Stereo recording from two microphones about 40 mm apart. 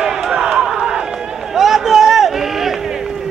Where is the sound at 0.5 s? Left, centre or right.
Centre.